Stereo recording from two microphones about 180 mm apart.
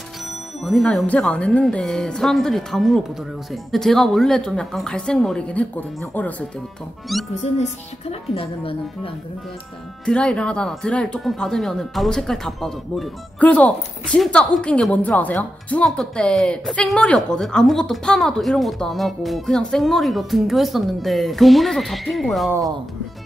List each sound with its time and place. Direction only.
0.6 s speech: centre (ahead or behind)
8.1 s a woman's voice: 30° left (ahead or behind)
10.0 s speech: 5° left (ahead or behind)